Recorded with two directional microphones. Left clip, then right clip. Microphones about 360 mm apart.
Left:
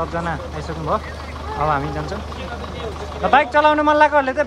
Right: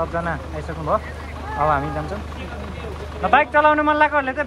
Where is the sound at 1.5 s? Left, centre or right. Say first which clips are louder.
Right 1 dB; centre.